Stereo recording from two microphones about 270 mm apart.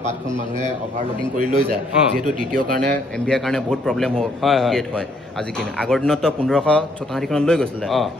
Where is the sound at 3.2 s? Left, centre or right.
Centre.